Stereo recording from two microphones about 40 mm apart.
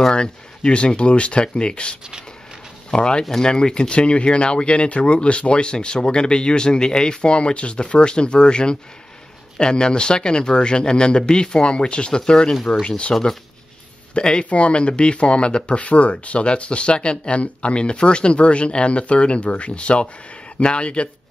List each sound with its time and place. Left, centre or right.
0.1 s speech: left
12.8 s speech: left
14.1 s speech: left